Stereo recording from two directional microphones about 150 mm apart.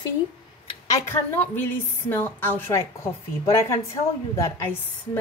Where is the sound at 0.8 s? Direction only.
20° left (ahead or behind).